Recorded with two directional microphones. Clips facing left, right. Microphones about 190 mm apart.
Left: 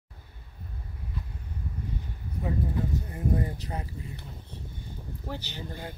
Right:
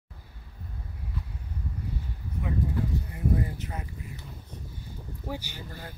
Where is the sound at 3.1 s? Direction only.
35° left (ahead or behind).